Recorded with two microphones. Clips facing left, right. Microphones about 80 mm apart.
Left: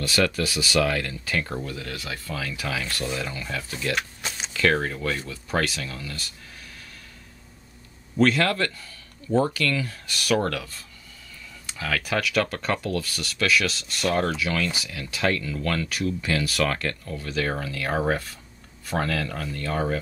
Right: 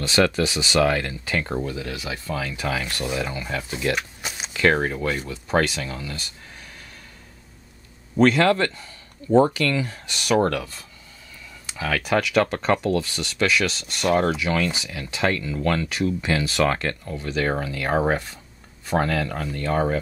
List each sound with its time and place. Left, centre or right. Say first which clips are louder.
0.0 s speech: right 4 dB; right
3.9 s a sound: right 1 dB; centre
4.6 s speech: right 3 dB; right
8.4 s speech: right 5 dB; right
12.4 s speech: right 5 dB; right